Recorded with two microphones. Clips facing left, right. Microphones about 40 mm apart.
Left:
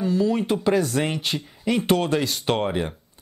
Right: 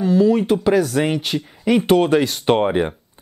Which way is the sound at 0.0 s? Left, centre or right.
Centre.